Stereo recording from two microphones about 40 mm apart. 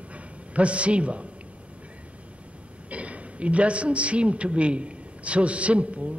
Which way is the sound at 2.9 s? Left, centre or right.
Right.